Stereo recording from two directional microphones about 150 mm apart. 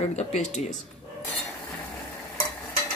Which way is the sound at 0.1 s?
50° left (ahead or behind).